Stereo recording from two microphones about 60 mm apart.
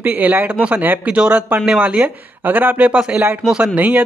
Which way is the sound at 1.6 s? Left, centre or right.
Centre.